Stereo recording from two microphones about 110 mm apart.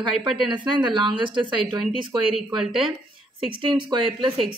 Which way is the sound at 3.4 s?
50° right (ahead or behind).